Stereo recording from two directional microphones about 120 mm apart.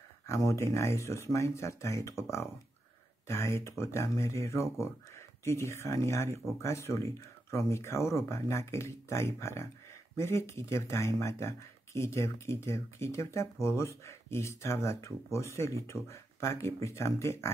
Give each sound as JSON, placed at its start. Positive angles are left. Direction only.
{"t": 0.3, "sound": "speech", "side_deg": 25}